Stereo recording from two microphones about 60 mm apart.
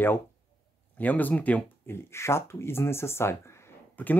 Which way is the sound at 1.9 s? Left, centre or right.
Left.